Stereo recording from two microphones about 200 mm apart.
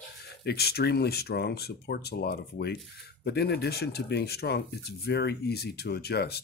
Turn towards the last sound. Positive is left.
turn(degrees=55)  # may be behind; listen again after turning